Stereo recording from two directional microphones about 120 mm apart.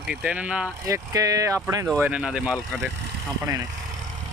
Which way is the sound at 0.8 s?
30° right (ahead or behind).